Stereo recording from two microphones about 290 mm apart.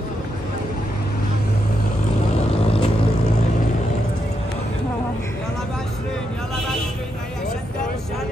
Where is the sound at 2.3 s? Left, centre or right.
Left.